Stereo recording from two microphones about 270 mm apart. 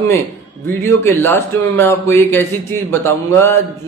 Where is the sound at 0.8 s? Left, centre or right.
Centre.